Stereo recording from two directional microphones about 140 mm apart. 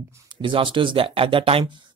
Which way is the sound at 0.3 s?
35° right (ahead or behind).